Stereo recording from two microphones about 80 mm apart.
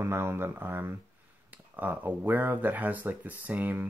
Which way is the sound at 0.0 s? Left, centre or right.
Right.